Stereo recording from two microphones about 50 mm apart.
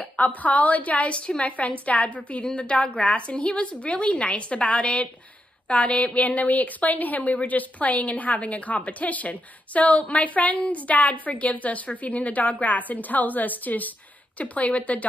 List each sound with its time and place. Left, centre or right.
0.0 s a woman's voice: left